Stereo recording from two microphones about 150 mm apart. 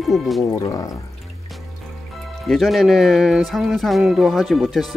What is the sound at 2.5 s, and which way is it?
Speech, centre (ahead or behind).